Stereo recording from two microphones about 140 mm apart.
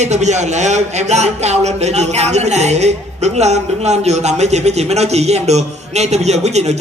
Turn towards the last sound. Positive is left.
turn(degrees=-50)  # may be behind; listen again after turning